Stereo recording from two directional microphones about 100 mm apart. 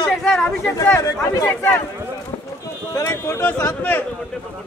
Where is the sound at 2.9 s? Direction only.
30° left (ahead or behind).